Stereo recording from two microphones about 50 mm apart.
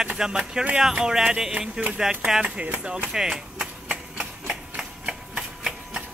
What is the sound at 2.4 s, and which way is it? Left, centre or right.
Speech, right.